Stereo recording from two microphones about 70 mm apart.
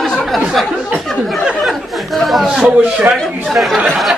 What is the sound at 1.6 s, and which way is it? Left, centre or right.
Speech, centre.